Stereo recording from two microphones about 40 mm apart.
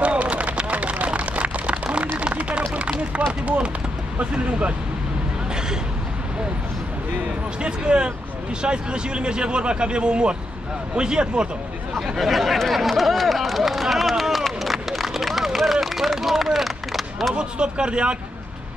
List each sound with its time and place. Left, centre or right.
0.0 s a sound: right
2.9 s speech: right
7.6 s speech: right
11.9 s chatter: centre
17.3 s speech: right